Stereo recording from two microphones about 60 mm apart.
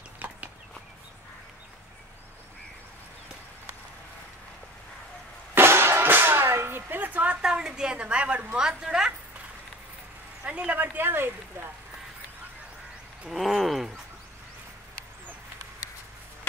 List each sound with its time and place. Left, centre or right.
0.2 s a sound: right
5.5 s music: right
7.4 s a woman's voice: centre
10.4 s speech: right
11.1 s speech: right
13.3 s a sound: centre